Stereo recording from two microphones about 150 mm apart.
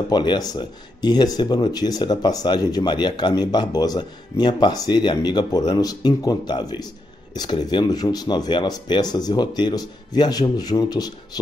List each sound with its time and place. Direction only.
0.1 s speech: 30° left (ahead or behind)